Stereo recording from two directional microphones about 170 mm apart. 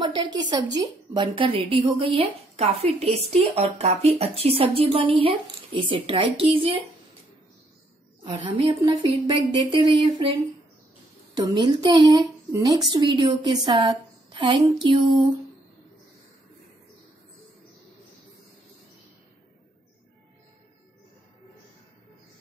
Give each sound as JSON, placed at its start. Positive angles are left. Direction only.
{"t": 0.0, "sound": "a woman's voice", "side_deg": -25}
{"t": 8.2, "sound": "a woman's voice", "side_deg": -30}
{"t": 11.3, "sound": "a woman's voice", "side_deg": -30}